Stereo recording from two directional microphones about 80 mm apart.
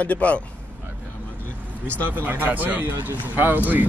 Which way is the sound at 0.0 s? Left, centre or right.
Centre.